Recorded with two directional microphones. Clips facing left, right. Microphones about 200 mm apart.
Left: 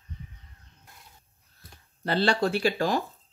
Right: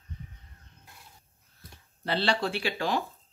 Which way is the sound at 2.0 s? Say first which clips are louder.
Left 4 dB; 45° left (ahead or behind).